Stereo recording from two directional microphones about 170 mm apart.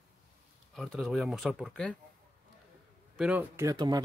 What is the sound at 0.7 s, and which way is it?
Speech, centre (ahead or behind).